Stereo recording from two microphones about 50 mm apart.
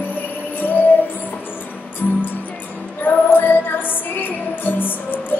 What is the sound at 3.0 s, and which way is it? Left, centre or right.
Music, left.